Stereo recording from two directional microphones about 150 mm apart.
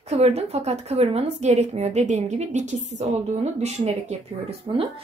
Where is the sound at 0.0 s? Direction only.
45° right (ahead or behind).